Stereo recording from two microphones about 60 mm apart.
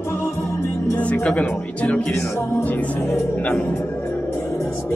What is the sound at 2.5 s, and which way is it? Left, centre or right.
Speech, left.